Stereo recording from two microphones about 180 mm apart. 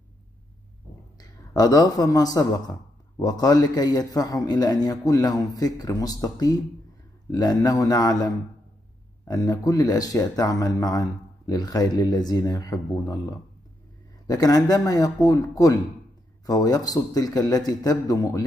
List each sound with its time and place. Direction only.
1.5 s speech: 20° left (ahead or behind)
9.3 s speech: 20° left (ahead or behind)
14.2 s speech: 20° left (ahead or behind)